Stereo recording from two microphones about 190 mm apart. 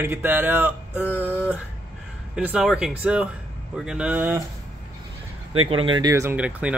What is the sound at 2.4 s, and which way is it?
Speech, 5° right (ahead or behind).